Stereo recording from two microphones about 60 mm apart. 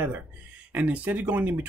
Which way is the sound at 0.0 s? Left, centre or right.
Right.